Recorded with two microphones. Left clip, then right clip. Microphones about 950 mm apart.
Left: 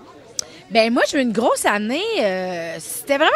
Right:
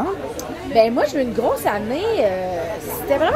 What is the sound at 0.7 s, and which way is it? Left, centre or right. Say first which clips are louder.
A woman's voice: even; left.